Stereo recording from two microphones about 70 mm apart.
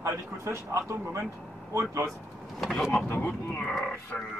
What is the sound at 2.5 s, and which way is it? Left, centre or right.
Speech, centre.